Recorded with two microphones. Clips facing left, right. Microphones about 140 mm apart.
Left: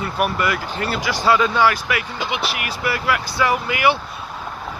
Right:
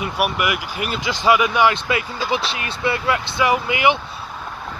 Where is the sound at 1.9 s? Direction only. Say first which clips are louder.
Right 2 dB; 25° right (ahead or behind).